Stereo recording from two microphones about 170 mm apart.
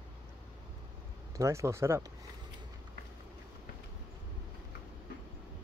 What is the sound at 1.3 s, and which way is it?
Speech, 15° right (ahead or behind).